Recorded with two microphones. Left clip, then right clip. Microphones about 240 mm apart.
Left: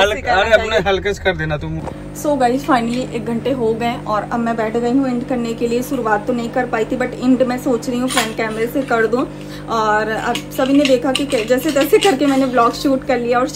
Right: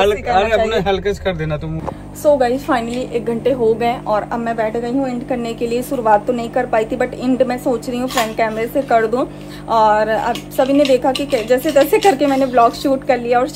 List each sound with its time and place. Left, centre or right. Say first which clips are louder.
0.0 s a man's voice: even; left
2.2 s a woman's voice: right 2 dB; centre